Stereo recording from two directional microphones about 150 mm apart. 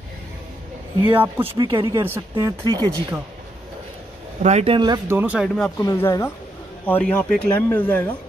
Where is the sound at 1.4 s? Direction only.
35° right (ahead or behind).